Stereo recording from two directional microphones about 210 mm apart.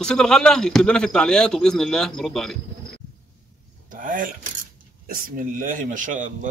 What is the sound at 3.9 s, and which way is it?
Speech, 40° right (ahead or behind).